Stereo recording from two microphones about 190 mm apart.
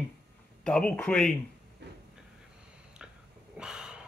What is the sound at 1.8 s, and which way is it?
Train, 65° right (ahead or behind).